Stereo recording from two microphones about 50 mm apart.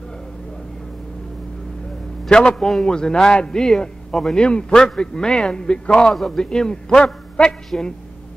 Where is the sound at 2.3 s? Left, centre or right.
Centre.